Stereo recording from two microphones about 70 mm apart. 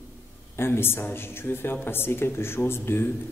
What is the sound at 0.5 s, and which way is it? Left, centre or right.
Speech, left.